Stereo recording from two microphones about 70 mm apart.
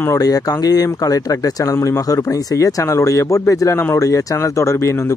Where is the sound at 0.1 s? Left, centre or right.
Left.